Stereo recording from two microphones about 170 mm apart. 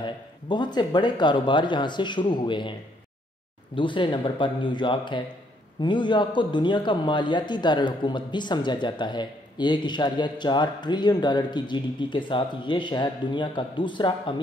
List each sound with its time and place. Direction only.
0.0 s a man's voice: 25° left (ahead or behind)
3.7 s a man's voice: 30° left (ahead or behind)